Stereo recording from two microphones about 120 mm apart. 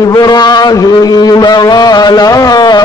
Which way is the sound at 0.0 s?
35° left (ahead or behind).